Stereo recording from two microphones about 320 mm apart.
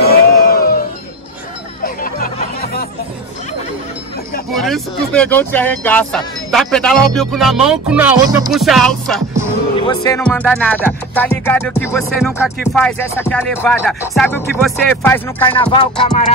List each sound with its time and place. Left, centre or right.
0.0 s a sound: left
2.1 s music: left
4.6 s speech: centre
15.5 s music: centre